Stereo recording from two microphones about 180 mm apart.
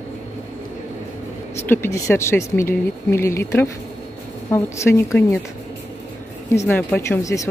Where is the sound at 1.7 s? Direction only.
15° left (ahead or behind).